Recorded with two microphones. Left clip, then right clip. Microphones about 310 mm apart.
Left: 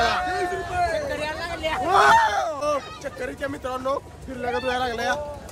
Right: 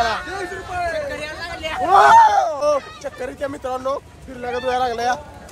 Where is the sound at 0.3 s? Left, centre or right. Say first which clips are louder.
Left 1 dB; centre.